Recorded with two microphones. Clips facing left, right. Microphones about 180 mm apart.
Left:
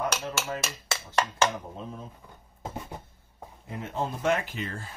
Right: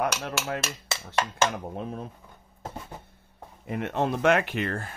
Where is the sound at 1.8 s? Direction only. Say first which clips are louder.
Right 5 dB; 65° right (ahead or behind).